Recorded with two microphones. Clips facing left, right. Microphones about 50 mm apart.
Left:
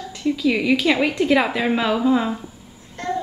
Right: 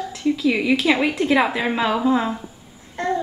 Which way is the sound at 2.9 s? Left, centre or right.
Centre.